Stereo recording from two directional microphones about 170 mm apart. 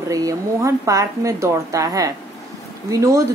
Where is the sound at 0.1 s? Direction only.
20° right (ahead or behind).